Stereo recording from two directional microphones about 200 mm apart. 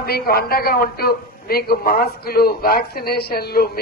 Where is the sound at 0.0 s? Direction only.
50° left (ahead or behind).